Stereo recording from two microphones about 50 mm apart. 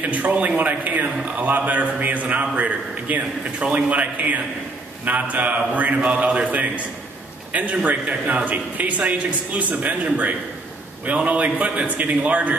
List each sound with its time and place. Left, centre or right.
0.0 s a man's voice: right